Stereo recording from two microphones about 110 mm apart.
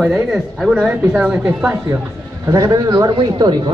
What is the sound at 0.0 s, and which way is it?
Speech, 10° right (ahead or behind).